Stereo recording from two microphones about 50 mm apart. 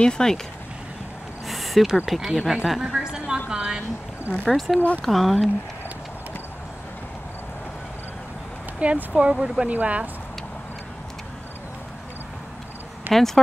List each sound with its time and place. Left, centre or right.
0.0 s speech: centre
1.5 s a sound: centre
2.0 s speech: centre
2.5 s a sound: centre
4.5 s speech: centre
8.7 s speech: right
9.7 s speech: right
13.1 s speech: centre